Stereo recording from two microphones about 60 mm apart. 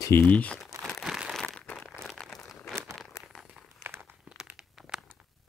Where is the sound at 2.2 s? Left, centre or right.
Centre.